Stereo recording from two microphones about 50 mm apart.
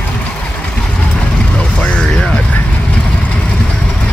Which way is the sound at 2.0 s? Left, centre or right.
Centre.